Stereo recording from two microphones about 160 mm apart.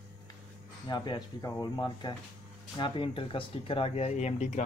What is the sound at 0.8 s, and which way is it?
Speech, 25° left (ahead or behind).